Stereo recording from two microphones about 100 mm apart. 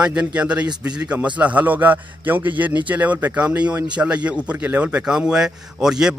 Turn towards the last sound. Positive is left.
turn(degrees=-5)  # may be behind; listen again after turning